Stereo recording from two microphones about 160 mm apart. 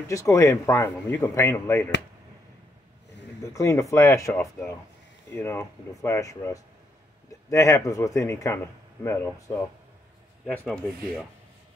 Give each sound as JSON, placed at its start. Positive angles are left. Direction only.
{"t": 0.1, "sound": "speech", "side_deg": 20}
{"t": 3.5, "sound": "a man's voice", "side_deg": 20}